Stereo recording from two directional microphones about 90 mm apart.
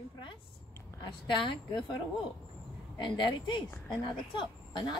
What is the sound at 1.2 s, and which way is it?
Speech, 65° left (ahead or behind).